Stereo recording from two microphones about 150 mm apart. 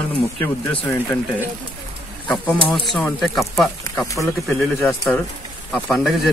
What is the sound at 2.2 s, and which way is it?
Speech, 10° left (ahead or behind).